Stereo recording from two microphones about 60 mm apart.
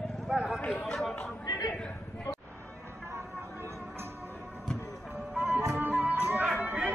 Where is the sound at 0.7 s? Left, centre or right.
Left.